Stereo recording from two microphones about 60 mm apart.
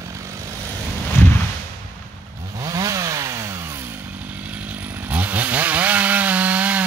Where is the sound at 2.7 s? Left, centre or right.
Right.